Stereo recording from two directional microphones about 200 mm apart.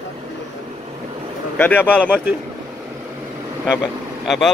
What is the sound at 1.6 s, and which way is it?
Speech, 10° left (ahead or behind).